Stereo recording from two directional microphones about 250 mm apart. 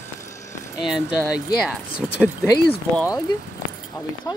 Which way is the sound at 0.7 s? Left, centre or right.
Centre.